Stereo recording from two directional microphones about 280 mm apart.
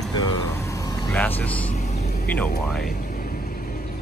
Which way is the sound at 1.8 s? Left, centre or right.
Left.